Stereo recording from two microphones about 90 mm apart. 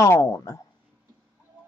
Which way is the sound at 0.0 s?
35° left (ahead or behind).